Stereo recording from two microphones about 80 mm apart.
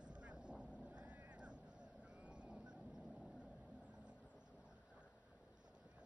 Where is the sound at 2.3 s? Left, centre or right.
Centre.